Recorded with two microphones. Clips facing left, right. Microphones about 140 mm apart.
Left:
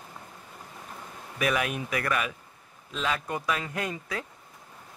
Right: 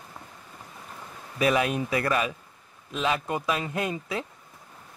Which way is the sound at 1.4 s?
25° right (ahead or behind).